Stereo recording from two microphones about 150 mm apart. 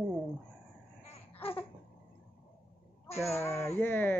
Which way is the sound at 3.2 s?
15° left (ahead or behind).